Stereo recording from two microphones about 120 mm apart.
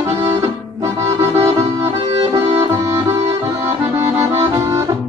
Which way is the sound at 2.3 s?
25° right (ahead or behind).